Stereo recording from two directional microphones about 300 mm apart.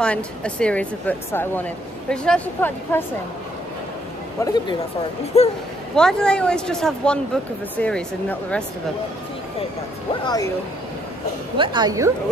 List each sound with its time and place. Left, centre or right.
0.0 s speech: centre
4.4 s speech: centre
5.3 s speech: left
5.9 s speech: centre
10.2 s speech: centre
11.5 s a woman's voice: centre